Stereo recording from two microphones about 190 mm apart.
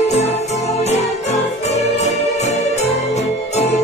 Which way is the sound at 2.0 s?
35° left (ahead or behind).